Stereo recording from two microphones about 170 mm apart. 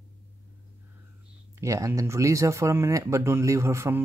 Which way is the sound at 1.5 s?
20° right (ahead or behind).